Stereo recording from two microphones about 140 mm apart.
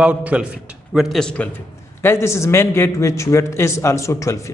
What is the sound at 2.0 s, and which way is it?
A man's voice, 20° left (ahead or behind).